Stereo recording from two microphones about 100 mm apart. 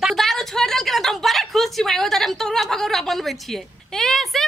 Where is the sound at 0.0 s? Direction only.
Centre (ahead or behind).